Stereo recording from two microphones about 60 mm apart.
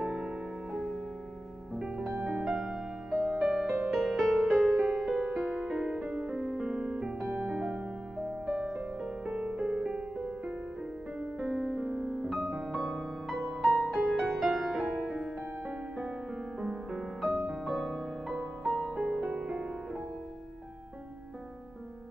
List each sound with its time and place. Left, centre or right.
0.0 s music: centre
3.5 s music: centre
4.7 s music: centre
5.8 s music: centre
7.2 s music: centre
19.1 s music: centre